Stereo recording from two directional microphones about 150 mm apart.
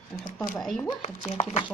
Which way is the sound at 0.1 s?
25° left (ahead or behind).